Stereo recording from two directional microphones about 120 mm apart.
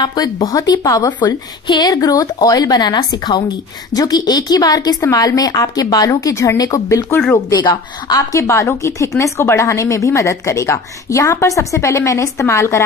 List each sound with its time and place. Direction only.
0.0 s a woman's voice: 35° left (ahead or behind)